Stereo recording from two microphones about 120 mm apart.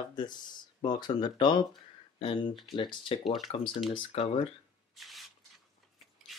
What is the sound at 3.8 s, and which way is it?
Speech, 50° left (ahead or behind).